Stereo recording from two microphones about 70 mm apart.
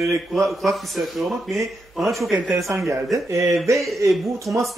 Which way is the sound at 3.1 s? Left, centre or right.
Right.